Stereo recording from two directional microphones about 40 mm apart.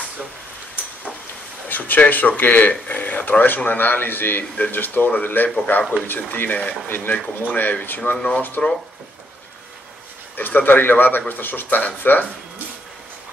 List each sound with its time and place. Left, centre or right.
1.7 s speech: left
6.0 s speech: left
10.3 s speech: left